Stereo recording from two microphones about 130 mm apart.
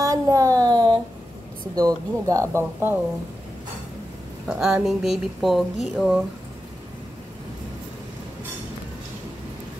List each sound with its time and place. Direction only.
0.0 s a sound: 25° right (ahead or behind)
1.8 s speech: 25° right (ahead or behind)
4.5 s speech: 5° right (ahead or behind)